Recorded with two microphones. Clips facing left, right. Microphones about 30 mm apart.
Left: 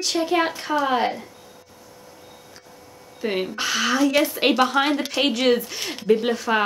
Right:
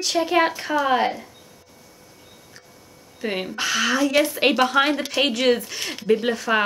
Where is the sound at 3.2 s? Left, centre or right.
Centre.